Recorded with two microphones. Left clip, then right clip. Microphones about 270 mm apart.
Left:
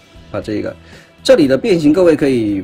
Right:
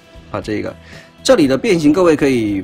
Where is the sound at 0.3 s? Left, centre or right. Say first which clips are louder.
Left 1 dB; centre.